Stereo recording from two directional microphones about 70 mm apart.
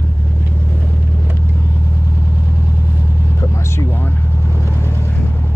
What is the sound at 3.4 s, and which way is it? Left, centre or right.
Vehicle, left.